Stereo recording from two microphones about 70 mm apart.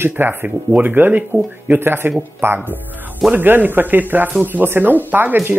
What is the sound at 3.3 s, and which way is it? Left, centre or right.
Speech, right.